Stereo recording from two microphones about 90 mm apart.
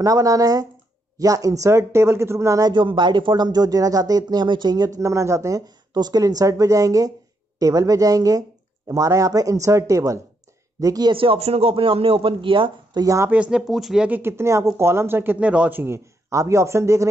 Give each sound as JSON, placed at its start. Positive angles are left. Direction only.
{"t": 0.0, "sound": "speech", "side_deg": -40}
{"t": 2.7, "sound": "speech", "side_deg": -60}
{"t": 5.9, "sound": "speech", "side_deg": -50}
{"t": 11.1, "sound": "speech", "side_deg": -90}
{"t": 12.9, "sound": "speech", "side_deg": -40}
{"t": 13.3, "sound": "speech", "side_deg": -10}
{"t": 13.7, "sound": "speech", "side_deg": 0}
{"t": 14.0, "sound": "speech", "side_deg": -25}